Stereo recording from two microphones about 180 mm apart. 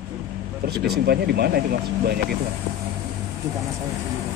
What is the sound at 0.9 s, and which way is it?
Speech, 60° right (ahead or behind).